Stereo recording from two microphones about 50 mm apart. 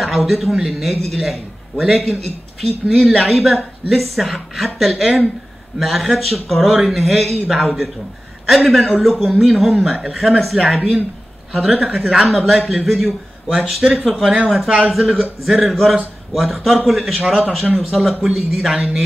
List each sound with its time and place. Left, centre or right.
0.0 s a man's voice: centre
9.8 s speech: centre
10.4 s a man's voice: centre
11.8 s speech: centre
12.3 s a man's voice: centre